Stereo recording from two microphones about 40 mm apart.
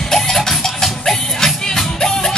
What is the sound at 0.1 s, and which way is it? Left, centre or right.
Music, centre.